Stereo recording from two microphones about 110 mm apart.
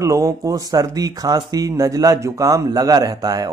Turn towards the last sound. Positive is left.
turn(degrees=-35)  # may be behind; listen again after turning